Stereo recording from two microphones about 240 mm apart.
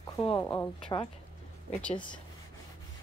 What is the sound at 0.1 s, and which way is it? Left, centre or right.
Speech, centre.